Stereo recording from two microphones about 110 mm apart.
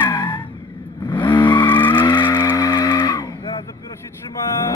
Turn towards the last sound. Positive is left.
turn(degrees=40)  # may be behind; listen again after turning